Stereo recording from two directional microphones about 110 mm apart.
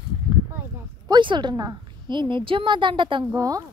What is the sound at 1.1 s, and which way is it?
A woman's voice, 45° right (ahead or behind).